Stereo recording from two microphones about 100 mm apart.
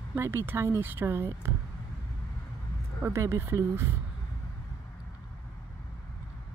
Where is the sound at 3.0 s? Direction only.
30° right (ahead or behind).